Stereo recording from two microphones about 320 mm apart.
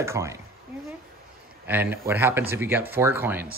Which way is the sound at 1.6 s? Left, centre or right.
Centre.